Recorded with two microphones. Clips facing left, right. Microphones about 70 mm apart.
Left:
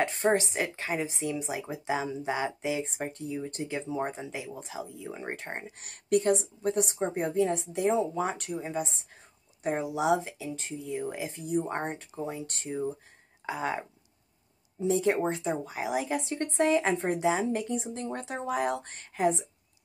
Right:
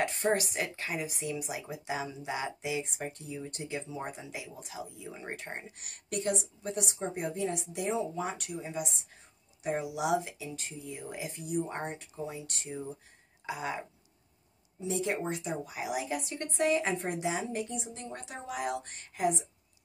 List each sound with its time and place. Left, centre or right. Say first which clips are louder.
0.0 s speech: left 3 dB; left